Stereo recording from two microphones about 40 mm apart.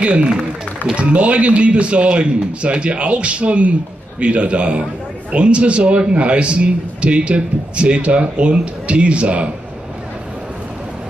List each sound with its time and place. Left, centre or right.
0.0 s a man's voice: right